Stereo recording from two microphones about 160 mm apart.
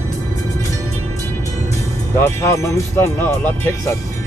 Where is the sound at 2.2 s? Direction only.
15° left (ahead or behind).